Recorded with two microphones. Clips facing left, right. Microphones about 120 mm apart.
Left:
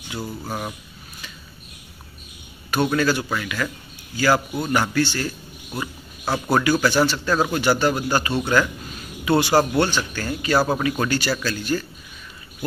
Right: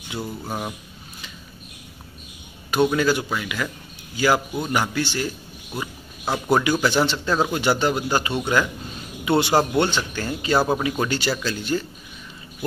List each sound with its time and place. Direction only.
0.5 s speech: 10° right (ahead or behind)
2.7 s speech: 15° right (ahead or behind)
5.8 s a sound: 15° right (ahead or behind)
6.5 s speech: 20° right (ahead or behind)